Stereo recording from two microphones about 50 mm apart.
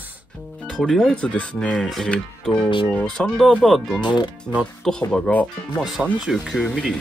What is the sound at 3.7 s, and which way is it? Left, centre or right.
Speech, centre.